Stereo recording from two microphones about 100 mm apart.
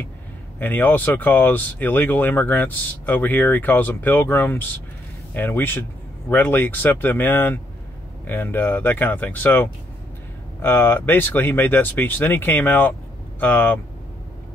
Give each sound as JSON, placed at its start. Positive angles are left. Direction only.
{"t": 0.6, "sound": "speech", "side_deg": 20}